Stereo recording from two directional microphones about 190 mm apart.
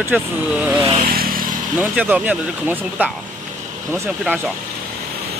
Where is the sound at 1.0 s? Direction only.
50° right (ahead or behind).